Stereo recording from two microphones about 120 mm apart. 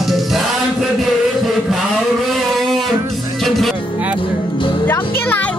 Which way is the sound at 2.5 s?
Centre (ahead or behind).